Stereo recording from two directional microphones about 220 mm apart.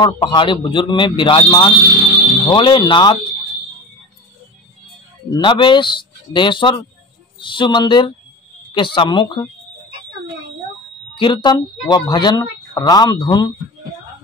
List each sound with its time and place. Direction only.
0.0 s speech: 20° left (ahead or behind)
5.3 s speech: 20° left (ahead or behind)
11.1 s speech: 20° left (ahead or behind)